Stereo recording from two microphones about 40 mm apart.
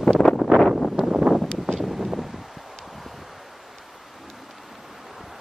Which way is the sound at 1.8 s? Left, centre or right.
Centre.